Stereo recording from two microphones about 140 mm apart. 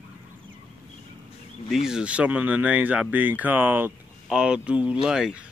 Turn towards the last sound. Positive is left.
turn(degrees=-5)  # may be behind; listen again after turning